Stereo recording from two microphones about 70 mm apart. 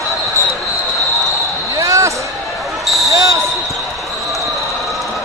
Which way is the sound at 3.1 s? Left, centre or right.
Right.